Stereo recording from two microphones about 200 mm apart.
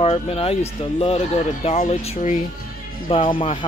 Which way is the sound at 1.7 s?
30° left (ahead or behind).